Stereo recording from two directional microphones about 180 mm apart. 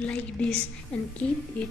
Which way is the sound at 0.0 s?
5° left (ahead or behind).